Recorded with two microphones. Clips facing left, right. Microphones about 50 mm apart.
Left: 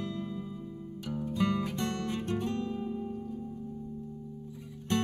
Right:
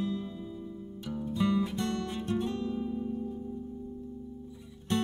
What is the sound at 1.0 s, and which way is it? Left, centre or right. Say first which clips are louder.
Music: left 1 dB; centre.